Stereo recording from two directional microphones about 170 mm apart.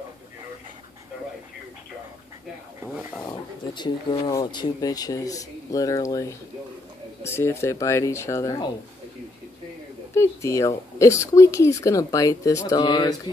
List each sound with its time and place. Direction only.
3.3 s speech: 25° left (ahead or behind)
10.1 s speech: 15° left (ahead or behind)